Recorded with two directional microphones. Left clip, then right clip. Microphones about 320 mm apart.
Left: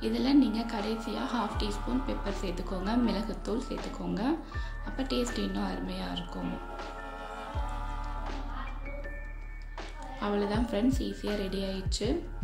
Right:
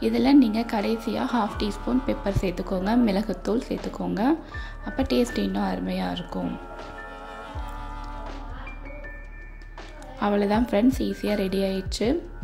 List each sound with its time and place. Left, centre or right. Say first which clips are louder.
0.0 s a woman's voice: right 7 dB; right
10.1 s a woman's voice: right 8 dB; right